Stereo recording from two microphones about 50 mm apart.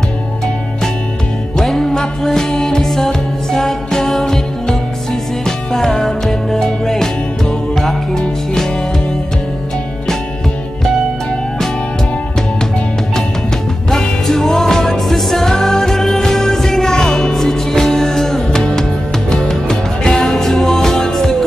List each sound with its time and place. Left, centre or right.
1.6 s music: centre
13.8 s music: centre